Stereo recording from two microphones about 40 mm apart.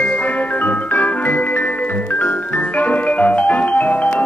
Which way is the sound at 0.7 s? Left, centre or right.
Left.